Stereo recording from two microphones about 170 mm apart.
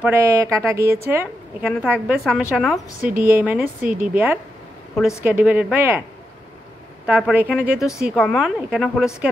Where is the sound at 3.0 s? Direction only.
55° right (ahead or behind).